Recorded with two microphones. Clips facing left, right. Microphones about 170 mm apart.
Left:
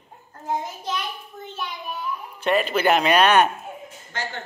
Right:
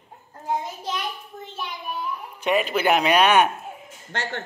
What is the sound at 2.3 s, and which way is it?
A man's voice, 10° right (ahead or behind).